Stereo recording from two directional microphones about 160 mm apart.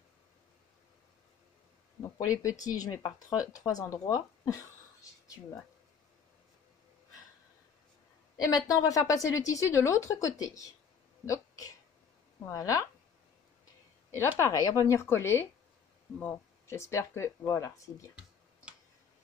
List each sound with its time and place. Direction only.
2.0 s speech: 20° left (ahead or behind)
8.6 s speech: 20° left (ahead or behind)
14.4 s speech: 20° left (ahead or behind)